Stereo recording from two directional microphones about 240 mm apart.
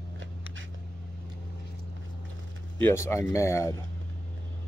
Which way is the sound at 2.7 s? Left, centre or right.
Centre.